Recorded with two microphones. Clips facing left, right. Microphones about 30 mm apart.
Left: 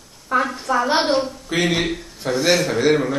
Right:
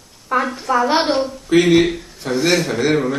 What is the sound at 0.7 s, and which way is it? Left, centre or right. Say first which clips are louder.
A woman's voice: right 2 dB; centre.